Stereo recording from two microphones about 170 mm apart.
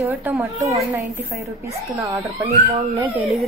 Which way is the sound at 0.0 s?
15° right (ahead or behind).